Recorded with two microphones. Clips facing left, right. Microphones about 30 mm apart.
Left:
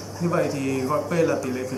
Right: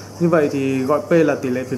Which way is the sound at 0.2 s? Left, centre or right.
Centre.